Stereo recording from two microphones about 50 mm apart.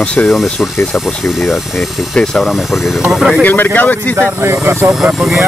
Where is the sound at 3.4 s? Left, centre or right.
Left.